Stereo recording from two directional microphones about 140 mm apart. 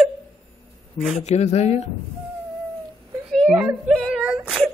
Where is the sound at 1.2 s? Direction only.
55° left (ahead or behind).